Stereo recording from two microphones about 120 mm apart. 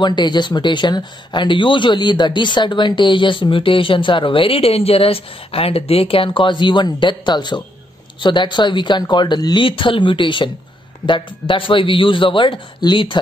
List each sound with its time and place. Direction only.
0.0 s a man's voice: 40° left (ahead or behind)